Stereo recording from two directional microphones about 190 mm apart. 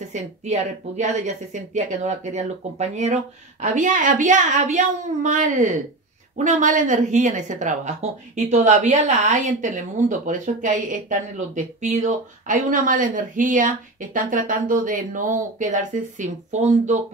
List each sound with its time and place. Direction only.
0.1 s speech: 40° right (ahead or behind)